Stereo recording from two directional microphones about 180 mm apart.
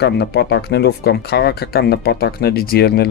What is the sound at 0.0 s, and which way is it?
Speech, 70° left (ahead or behind).